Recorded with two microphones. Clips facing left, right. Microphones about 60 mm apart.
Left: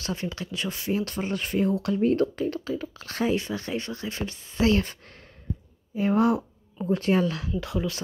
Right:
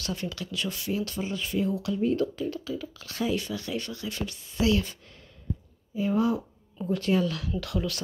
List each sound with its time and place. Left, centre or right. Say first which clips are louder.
0.0 s speech: left 2 dB; left
6.8 s speech: left 2 dB; left